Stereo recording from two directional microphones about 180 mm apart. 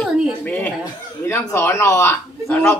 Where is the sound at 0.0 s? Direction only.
5° left (ahead or behind).